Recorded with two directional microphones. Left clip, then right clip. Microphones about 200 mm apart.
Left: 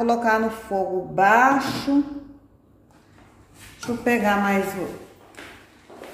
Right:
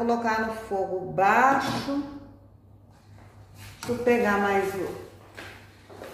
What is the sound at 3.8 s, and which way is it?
Speech, 60° left (ahead or behind).